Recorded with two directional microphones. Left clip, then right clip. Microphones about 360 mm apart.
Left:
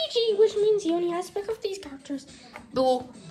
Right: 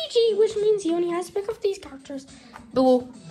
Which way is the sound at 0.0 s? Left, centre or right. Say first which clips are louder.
Right 5 dB; right.